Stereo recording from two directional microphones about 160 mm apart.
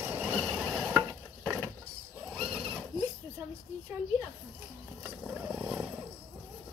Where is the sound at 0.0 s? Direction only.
15° right (ahead or behind).